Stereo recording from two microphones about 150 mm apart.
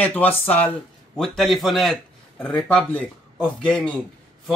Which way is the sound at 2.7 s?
10° left (ahead or behind).